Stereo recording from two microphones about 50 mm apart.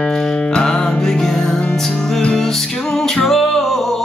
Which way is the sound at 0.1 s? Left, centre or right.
Centre.